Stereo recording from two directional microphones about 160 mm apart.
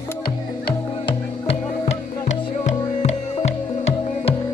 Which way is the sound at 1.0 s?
40° left (ahead or behind).